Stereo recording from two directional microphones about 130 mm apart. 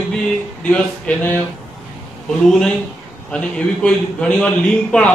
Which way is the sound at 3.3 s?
10° left (ahead or behind).